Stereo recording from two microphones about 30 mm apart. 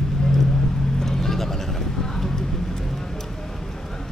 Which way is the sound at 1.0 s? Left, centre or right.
Centre.